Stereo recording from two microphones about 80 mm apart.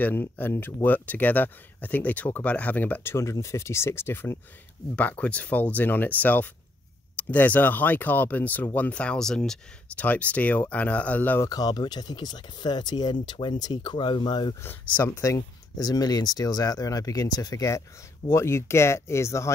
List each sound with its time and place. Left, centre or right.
0.0 s speech: left; by 9.6 s centre
9.9 s speech: centre
11.4 s speech: left
14.9 s speech: left
15.1 s speech: left
18.3 s speech: left